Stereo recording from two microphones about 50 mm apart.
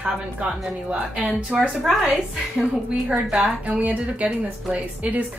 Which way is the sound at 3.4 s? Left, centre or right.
Right.